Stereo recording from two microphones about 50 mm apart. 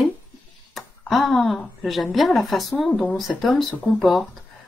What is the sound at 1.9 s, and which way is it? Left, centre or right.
Speech, centre.